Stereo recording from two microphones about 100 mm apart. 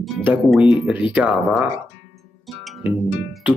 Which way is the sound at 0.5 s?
10° right (ahead or behind).